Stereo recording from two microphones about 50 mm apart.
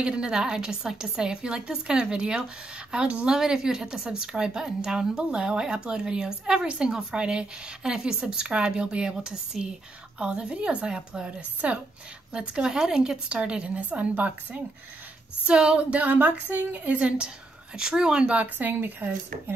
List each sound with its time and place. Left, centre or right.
0.0 s a woman's voice: centre
11.6 s a woman's voice: right
17.7 s a woman's voice: centre
18.4 s speech: right